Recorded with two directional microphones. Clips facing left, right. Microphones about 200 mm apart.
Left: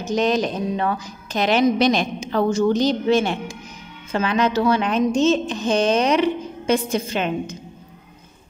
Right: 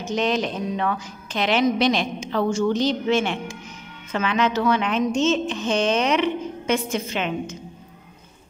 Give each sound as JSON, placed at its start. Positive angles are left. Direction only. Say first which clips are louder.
{"t": 0.0, "sound": "a woman's voice", "louder": "left 3 dB", "side_deg": 40}